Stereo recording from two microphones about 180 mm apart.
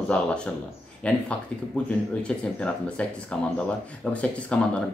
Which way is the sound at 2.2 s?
5° left (ahead or behind).